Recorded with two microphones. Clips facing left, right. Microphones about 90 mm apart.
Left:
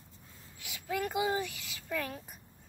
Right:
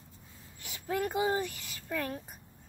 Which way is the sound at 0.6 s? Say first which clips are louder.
Right 2 dB; 35° right (ahead or behind).